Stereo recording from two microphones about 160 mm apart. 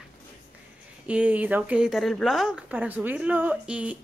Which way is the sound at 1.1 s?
10° right (ahead or behind).